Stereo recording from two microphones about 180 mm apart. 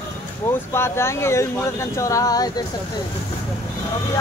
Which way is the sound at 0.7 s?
15° left (ahead or behind).